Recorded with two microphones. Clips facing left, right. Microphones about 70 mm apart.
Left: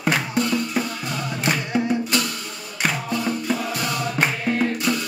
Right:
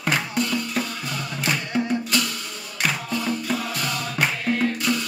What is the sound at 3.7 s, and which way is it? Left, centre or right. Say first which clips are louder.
Music: left 3 dB; left.